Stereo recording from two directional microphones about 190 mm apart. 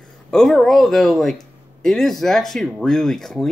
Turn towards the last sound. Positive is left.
turn(degrees=0)  # may be behind; listen again after turning